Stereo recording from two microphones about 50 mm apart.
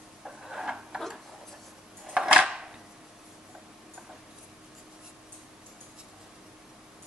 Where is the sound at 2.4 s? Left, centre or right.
Centre.